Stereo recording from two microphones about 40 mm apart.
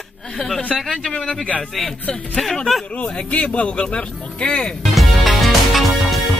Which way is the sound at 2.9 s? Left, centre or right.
Left.